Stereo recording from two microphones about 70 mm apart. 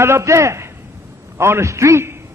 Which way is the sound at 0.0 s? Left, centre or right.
Right.